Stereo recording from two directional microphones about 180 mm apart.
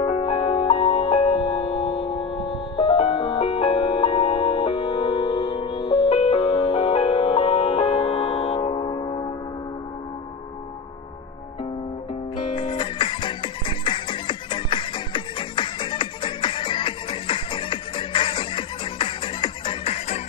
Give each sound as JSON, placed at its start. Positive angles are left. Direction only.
{"t": 0.0, "sound": "music", "side_deg": 35}
{"t": 12.7, "sound": "music", "side_deg": 25}